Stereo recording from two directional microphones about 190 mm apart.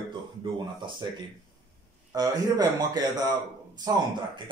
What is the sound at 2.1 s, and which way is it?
Speech, 20° right (ahead or behind).